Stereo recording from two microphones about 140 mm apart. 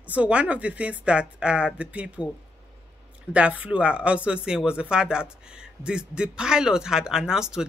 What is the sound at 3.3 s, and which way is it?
Speech, 10° right (ahead or behind).